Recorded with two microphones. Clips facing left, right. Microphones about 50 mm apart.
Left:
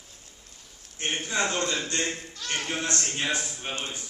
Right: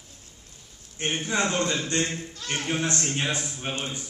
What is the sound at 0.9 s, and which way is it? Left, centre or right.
A man's voice, right.